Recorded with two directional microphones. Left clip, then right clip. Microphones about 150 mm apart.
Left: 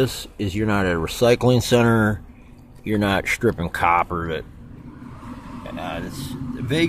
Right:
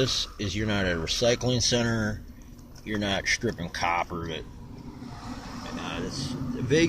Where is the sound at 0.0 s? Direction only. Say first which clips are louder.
Left 3 dB; 35° left (ahead or behind).